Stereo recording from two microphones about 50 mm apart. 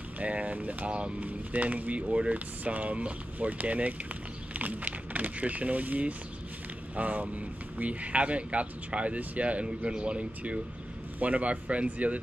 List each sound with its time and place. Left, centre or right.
0.2 s speech: right